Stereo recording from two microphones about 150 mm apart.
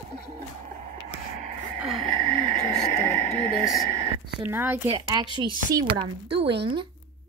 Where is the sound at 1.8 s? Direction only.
Centre (ahead or behind).